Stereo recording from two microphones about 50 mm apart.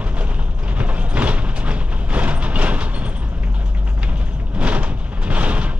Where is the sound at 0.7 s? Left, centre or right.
Right.